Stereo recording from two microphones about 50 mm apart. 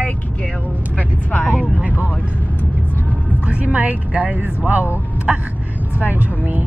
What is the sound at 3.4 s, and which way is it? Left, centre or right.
Speech, right.